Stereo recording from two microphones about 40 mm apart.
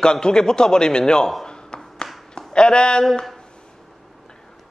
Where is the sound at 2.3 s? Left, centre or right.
Left.